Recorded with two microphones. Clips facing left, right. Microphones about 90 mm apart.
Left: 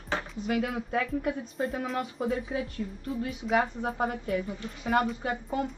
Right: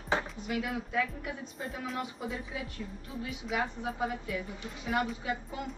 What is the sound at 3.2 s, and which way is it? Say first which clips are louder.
A woman's voice: left 6 dB; 45° left (ahead or behind).